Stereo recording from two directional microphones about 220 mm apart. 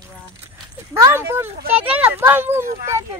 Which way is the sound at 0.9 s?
10° right (ahead or behind).